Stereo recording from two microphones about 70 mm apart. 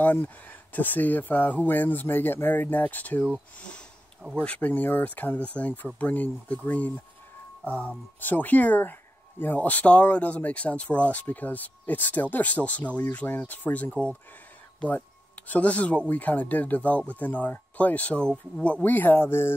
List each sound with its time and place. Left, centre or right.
0.0 s speech: left
4.4 s speech: left
7.6 s speech: right
8.2 s speech: left